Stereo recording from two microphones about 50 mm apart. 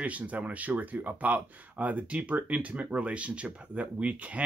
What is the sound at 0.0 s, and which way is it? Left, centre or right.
Speech, right.